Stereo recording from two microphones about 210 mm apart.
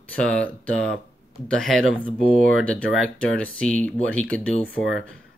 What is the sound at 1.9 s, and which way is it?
Speech, 25° left (ahead or behind).